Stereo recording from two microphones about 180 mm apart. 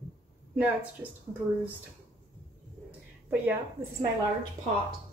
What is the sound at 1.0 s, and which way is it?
Speech, 10° right (ahead or behind).